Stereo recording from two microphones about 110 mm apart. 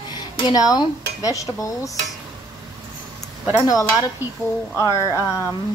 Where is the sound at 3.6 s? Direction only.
30° left (ahead or behind).